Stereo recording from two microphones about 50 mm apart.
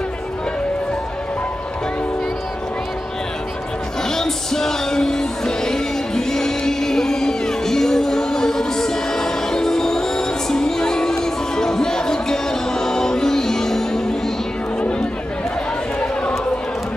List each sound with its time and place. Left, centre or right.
4.1 s music: centre
14.8 s run: centre